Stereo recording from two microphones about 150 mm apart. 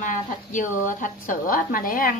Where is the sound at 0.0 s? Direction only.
60° left (ahead or behind).